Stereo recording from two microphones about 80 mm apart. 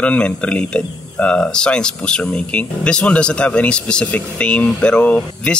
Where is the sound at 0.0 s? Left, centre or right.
Centre.